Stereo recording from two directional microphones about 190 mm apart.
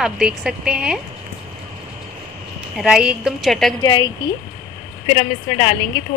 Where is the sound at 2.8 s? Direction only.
5° right (ahead or behind).